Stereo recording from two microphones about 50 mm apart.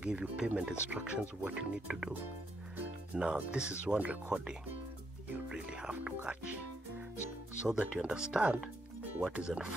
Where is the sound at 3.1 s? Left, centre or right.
Right.